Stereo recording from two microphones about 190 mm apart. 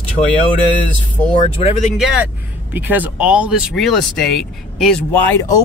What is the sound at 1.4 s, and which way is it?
Speech, 35° left (ahead or behind).